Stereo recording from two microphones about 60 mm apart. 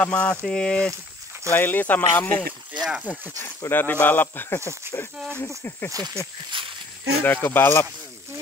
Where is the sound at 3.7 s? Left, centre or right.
Left.